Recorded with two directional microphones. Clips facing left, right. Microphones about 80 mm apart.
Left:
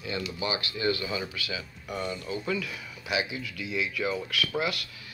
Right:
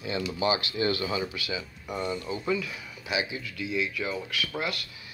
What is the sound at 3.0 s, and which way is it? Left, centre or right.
Speech, centre.